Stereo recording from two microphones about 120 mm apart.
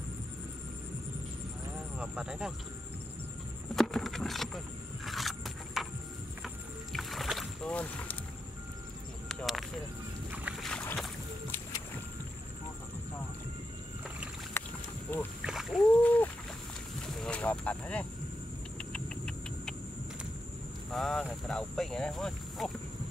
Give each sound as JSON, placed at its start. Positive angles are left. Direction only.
{"t": 2.0, "sound": "speech", "side_deg": -10}
{"t": 3.7, "sound": "vehicle", "side_deg": 0}
{"t": 5.0, "sound": "a sound", "side_deg": 0}
{"t": 6.4, "sound": "rowboat", "side_deg": 0}
{"t": 7.7, "sound": "vehicle", "side_deg": 10}
{"t": 9.3, "sound": "a sound", "side_deg": 5}
{"t": 10.3, "sound": "boat", "side_deg": -10}
{"t": 10.6, "sound": "boat", "side_deg": 10}
{"t": 15.1, "sound": "rowboat", "side_deg": 15}
{"t": 15.4, "sound": "splash", "side_deg": 0}
{"t": 16.0, "sound": "splash", "side_deg": 10}
{"t": 17.0, "sound": "a sound", "side_deg": 5}
{"t": 20.9, "sound": "cricket", "side_deg": 5}